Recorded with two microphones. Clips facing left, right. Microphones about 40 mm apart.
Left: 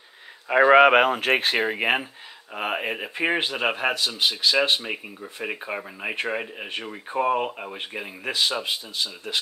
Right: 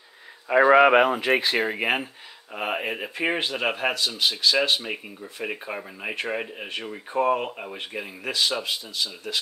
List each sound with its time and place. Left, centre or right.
0.7 s speech: left
1.6 s speech: left; by 6.7 s centre
6.9 s speech: centre